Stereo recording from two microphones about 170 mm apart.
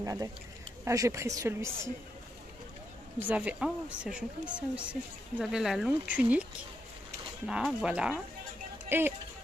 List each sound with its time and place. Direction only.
0.0 s speech: 20° right (ahead or behind)
3.2 s speech: 10° right (ahead or behind)
7.4 s speech: 5° right (ahead or behind)